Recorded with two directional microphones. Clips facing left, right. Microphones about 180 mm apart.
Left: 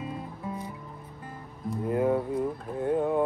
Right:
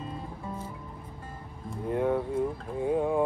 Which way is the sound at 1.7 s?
5° left (ahead or behind).